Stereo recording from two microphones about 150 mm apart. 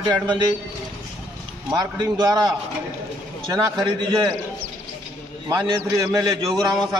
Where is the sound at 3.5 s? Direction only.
30° right (ahead or behind).